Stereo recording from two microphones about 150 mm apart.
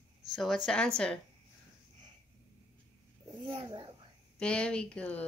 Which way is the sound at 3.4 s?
30° right (ahead or behind).